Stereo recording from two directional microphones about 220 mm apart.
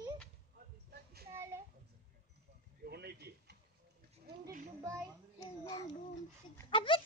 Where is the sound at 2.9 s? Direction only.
45° right (ahead or behind).